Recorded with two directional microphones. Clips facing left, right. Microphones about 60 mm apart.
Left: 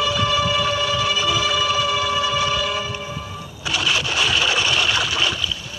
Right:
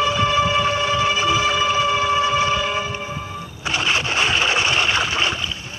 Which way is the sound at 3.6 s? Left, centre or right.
Right.